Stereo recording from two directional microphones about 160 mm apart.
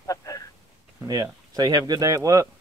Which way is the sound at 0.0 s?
20° left (ahead or behind).